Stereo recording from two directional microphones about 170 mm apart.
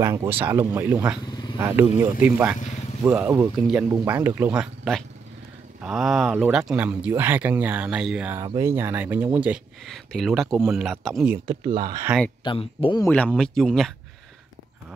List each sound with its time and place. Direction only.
0.0 s speech: 15° right (ahead or behind)
1.2 s a sound: 25° left (ahead or behind)
1.6 s speech: 15° right (ahead or behind)
5.8 s speech: 5° right (ahead or behind)
8.5 s speech: 15° right (ahead or behind); by 11.3 s centre (ahead or behind)
11.7 s speech: 25° right (ahead or behind)
12.4 s speech: 30° left (ahead or behind)
13.0 s speech: 5° left (ahead or behind)